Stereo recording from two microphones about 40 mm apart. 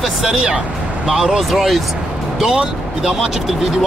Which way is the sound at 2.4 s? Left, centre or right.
Centre.